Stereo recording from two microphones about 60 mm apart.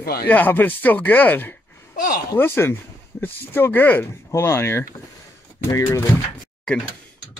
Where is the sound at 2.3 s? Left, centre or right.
Left.